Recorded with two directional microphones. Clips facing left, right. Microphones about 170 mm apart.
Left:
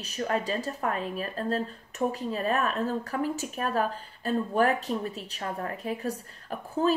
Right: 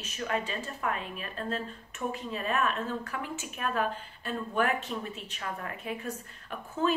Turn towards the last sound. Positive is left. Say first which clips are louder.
# left 4 dB
turn(degrees=35)  # may be behind; listen again after turning